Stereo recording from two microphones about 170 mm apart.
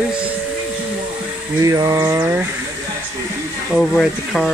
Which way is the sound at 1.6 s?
20° right (ahead or behind).